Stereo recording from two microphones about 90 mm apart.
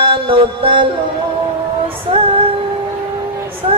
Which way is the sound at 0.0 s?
75° right (ahead or behind).